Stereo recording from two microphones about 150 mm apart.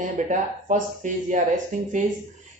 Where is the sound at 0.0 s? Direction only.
60° right (ahead or behind).